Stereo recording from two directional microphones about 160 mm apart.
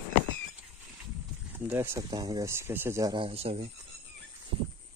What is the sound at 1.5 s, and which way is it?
Speech, 15° right (ahead or behind).